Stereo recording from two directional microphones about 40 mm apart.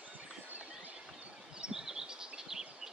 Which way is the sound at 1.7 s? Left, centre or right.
Centre.